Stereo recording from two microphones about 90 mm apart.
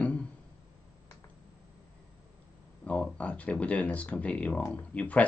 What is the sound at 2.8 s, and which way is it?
Speech, 15° left (ahead or behind).